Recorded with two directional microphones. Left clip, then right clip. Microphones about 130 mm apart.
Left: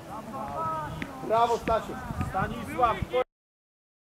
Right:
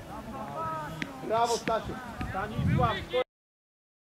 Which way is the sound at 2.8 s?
30° left (ahead or behind).